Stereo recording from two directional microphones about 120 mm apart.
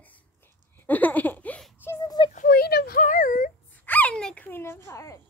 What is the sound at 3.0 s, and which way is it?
Speech, 90° left.